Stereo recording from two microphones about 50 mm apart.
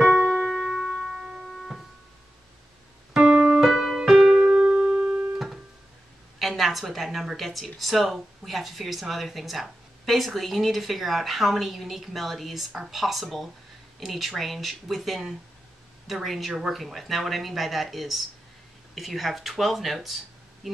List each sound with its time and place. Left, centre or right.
0.0 s piano: centre
1.1 s a sound: centre
3.2 s piano: centre
3.6 s keyboard: centre
6.4 s speech: centre